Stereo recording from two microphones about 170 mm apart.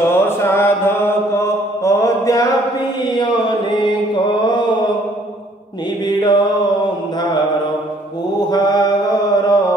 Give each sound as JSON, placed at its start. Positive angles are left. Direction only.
{"t": 0.1, "sound": "mantra", "side_deg": 15}
{"t": 3.1, "sound": "chant", "side_deg": 25}
{"t": 6.0, "sound": "mantra", "side_deg": 25}
{"t": 8.5, "sound": "mantra", "side_deg": 25}